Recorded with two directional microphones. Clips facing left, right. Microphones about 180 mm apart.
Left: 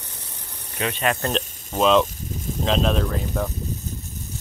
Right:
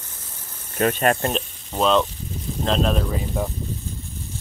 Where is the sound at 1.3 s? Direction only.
Centre (ahead or behind).